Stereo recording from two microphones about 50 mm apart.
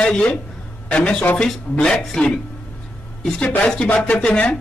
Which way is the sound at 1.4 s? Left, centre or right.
Centre.